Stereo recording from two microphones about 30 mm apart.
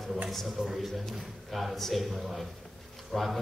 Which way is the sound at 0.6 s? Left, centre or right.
Right.